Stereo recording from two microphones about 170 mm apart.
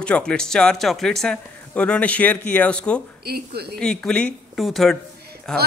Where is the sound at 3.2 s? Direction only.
70° right (ahead or behind).